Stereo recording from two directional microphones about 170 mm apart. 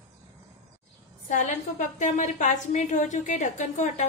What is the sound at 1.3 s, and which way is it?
A woman's voice, 45° left (ahead or behind).